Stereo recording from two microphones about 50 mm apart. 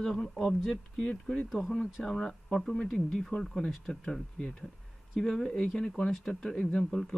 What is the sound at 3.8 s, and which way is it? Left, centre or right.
Speech, centre.